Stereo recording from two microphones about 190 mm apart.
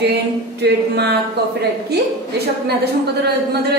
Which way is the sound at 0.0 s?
60° right (ahead or behind).